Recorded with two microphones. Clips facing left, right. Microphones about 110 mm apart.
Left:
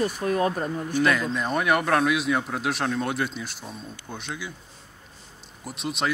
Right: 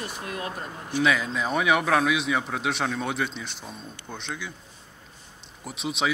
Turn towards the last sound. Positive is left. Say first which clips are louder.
# even
turn(degrees=0)  # may be behind; listen again after turning